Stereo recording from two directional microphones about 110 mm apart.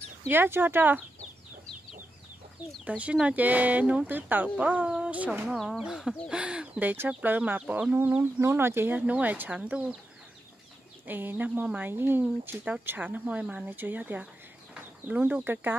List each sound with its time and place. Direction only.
0.3 s speech: 20° right (ahead or behind)
2.8 s speech: 10° right (ahead or behind)
5.5 s speech: centre (ahead or behind)
11.1 s speech: 15° right (ahead or behind)
14.2 s chicken: 10° right (ahead or behind)